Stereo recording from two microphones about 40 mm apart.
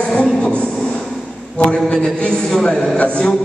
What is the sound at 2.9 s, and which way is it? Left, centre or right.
Speech, left.